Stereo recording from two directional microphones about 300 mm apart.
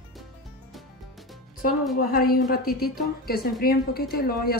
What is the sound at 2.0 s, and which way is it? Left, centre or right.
Speech, left.